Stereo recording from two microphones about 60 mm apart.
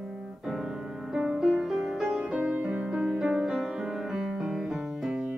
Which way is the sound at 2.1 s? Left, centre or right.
Centre.